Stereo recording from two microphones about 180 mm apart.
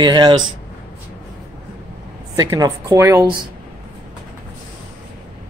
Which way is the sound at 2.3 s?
20° right (ahead or behind).